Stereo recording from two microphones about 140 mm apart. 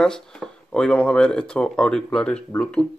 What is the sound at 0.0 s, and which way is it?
Speech, 5° left (ahead or behind).